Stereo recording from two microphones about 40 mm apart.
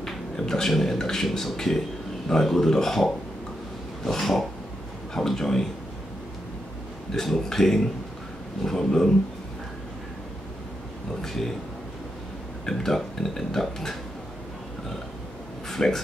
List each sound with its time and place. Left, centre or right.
0.0 s speech: centre
4.0 s a sound: centre
5.1 s speech: centre
7.2 s speech: centre
11.1 s speech: centre
12.6 s speech: centre
15.7 s speech: centre